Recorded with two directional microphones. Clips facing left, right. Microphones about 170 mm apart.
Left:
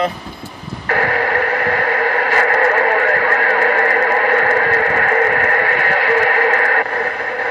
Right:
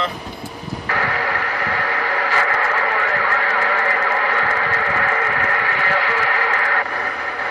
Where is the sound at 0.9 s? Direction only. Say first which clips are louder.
Left 6 dB; 50° left (ahead or behind).